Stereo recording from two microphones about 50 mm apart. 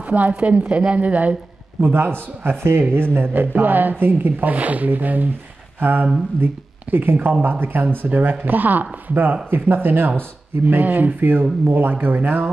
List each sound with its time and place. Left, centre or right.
0.0 s a woman's voice: right
1.8 s speech: right